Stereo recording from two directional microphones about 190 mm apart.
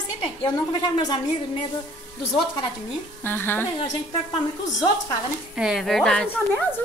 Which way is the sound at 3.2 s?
10° left (ahead or behind).